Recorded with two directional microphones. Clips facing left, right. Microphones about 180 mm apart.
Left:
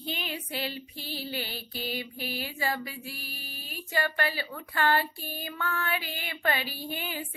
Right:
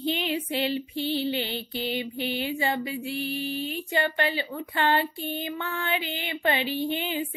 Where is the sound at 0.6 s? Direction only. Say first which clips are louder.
Right 9 dB; 25° right (ahead or behind).